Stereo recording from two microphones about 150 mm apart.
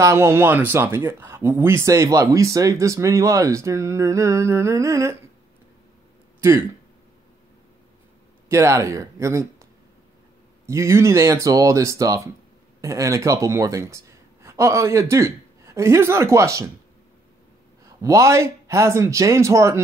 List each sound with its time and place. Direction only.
0.0 s speech: 20° right (ahead or behind)
8.5 s speech: 20° right (ahead or behind)
10.7 s speech: 20° right (ahead or behind)
18.0 s speech: 20° right (ahead or behind)